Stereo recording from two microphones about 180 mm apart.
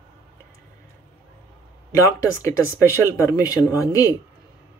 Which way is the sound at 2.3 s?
15° left (ahead or behind).